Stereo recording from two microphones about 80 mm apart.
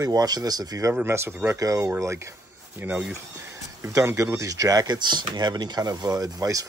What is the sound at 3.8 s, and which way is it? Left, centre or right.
Speech, right.